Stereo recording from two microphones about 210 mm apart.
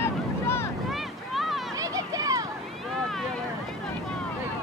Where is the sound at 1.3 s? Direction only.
Centre (ahead or behind).